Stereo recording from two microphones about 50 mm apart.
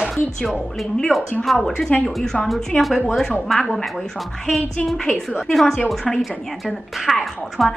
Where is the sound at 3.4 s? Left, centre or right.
Centre.